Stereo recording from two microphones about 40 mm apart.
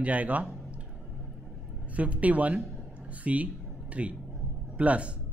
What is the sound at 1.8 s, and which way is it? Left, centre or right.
Speech, right.